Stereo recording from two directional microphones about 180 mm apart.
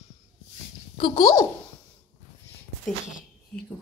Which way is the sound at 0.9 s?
25° left (ahead or behind).